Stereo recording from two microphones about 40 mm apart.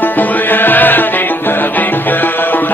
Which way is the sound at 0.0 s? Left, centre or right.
Left.